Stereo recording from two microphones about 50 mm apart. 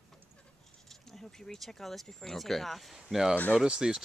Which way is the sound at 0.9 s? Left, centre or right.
Centre.